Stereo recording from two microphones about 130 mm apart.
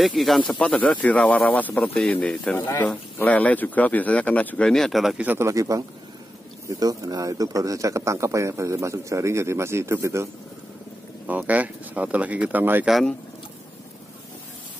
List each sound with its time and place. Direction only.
0.0 s a man's voice: centre (ahead or behind)
5.5 s speech: 25° right (ahead or behind)
11.2 s speech: 10° right (ahead or behind)
12.8 s speech: centre (ahead or behind)